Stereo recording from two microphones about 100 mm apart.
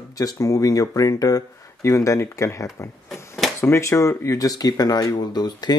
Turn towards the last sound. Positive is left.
turn(degrees=45)  # may be behind; listen again after turning